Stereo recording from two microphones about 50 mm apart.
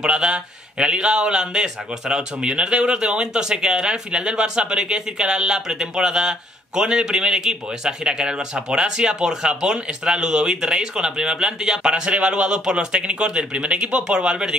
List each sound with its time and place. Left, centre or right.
0.0 s a man's voice: centre